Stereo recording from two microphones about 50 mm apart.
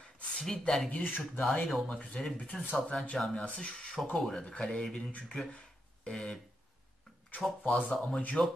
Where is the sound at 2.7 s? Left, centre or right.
Centre.